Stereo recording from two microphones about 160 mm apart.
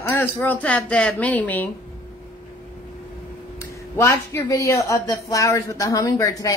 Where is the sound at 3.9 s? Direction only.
15° left (ahead or behind).